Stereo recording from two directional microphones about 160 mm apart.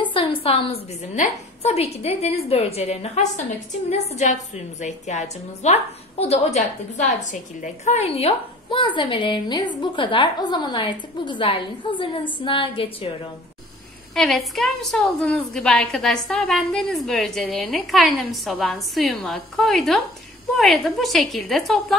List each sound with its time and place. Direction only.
0.0 s a sound: 35° left (ahead or behind)
1.1 s a woman's voice: 45° left (ahead or behind)
14.1 s a woman's voice: centre (ahead or behind)